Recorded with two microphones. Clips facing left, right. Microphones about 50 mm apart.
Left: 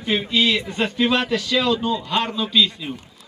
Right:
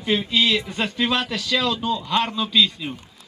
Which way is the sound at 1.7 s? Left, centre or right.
Left.